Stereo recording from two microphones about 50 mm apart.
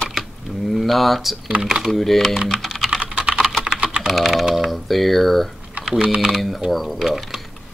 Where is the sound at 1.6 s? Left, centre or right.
Centre.